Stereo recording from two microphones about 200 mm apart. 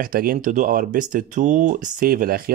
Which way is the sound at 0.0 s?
45° right (ahead or behind).